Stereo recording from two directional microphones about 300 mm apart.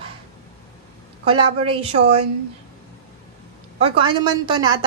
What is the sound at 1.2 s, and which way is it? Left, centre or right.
A woman's voice, centre.